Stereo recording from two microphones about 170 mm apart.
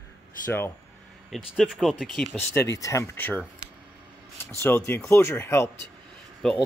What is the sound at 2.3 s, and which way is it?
Speech, 15° left (ahead or behind).